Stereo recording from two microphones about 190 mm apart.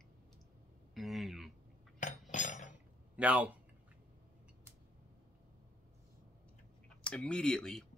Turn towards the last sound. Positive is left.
turn(degrees=5)  # may be behind; listen again after turning